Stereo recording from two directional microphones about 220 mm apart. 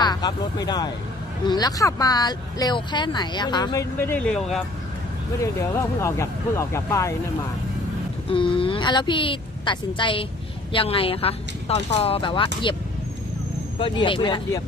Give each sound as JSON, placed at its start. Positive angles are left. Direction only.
{"t": 0.0, "sound": "speech", "side_deg": 20}
{"t": 5.4, "sound": "speech", "side_deg": 15}
{"t": 8.3, "sound": "a woman's voice", "side_deg": 25}